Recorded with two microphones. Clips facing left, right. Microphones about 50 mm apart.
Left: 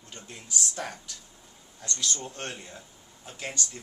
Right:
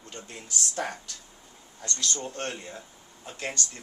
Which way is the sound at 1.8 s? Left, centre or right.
Centre.